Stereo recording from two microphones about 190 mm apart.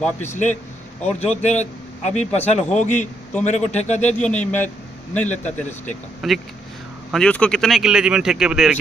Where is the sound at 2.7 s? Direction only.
40° left (ahead or behind).